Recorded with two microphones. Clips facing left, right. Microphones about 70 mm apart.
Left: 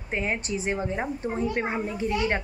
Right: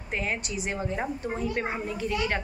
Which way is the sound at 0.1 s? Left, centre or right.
Left.